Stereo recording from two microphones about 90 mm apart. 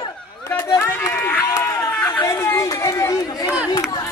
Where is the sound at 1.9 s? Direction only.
25° left (ahead or behind).